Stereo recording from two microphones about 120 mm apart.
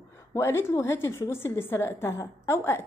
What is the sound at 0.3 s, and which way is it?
A woman's voice, 20° left (ahead or behind).